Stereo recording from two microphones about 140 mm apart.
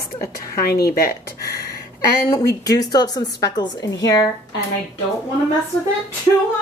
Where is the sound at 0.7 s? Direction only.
90° left.